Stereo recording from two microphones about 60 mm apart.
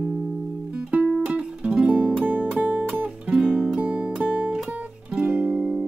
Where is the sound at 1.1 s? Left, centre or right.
Centre.